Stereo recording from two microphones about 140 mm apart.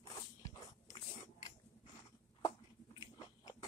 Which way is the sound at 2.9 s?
30° left (ahead or behind).